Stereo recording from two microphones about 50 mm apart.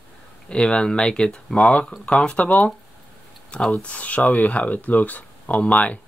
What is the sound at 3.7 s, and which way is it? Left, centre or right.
Speech, left.